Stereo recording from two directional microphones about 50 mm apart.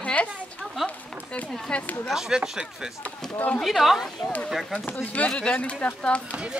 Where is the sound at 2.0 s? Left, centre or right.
Centre.